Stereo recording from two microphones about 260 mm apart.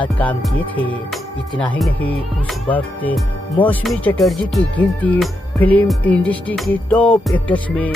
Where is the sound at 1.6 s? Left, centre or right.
Centre.